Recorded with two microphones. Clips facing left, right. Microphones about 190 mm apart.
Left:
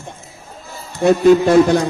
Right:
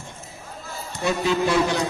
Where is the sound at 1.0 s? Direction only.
50° left (ahead or behind).